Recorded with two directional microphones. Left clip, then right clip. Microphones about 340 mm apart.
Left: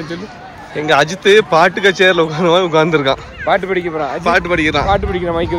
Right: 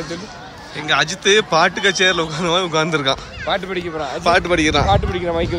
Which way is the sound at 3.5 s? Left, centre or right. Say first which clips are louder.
Left 7 dB; centre.